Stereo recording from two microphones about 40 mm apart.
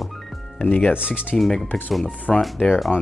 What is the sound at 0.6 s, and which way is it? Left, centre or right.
Speech, left.